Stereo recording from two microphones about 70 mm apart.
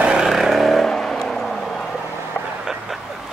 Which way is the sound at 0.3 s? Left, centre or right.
Centre.